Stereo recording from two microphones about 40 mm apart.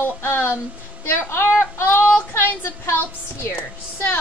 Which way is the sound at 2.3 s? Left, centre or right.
Left.